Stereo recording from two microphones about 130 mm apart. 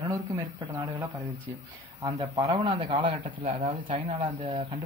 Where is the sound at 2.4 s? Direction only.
55° right (ahead or behind).